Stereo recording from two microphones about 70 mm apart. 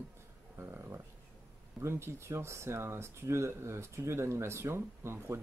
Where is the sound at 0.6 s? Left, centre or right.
Right.